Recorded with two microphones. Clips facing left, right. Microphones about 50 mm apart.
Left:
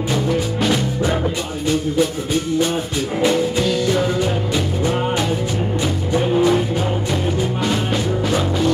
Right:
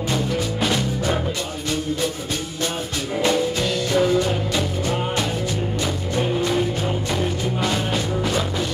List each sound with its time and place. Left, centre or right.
3.2 s music: centre
6.1 s music: centre